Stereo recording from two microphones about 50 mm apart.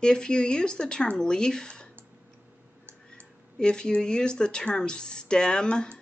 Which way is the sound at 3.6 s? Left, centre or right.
Centre.